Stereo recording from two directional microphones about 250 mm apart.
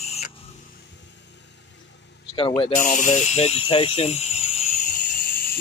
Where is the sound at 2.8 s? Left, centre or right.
Left.